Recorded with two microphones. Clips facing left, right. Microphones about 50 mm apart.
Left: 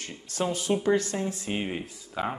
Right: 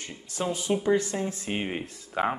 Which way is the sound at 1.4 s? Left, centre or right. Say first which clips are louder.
Even; centre.